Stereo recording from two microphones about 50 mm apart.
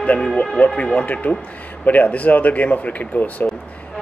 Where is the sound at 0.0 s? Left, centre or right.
Left.